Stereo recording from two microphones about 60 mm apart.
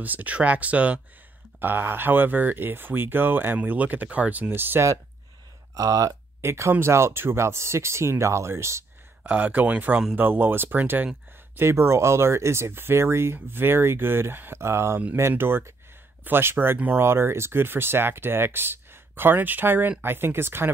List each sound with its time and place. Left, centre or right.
0.0 s speech: right
1.6 s speech: right
5.8 s speech: right
6.4 s speech: right
9.2 s speech: right
11.5 s speech: right